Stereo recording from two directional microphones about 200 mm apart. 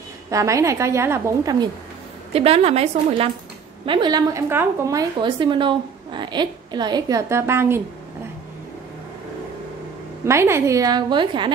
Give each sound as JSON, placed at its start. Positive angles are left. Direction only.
{"t": 0.3, "sound": "a woman's voice", "side_deg": -15}
{"t": 2.3, "sound": "a woman's voice", "side_deg": -30}
{"t": 10.2, "sound": "a woman's voice", "side_deg": -15}